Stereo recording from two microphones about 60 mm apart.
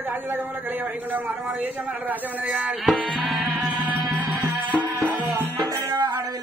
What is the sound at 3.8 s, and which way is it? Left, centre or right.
Music, right.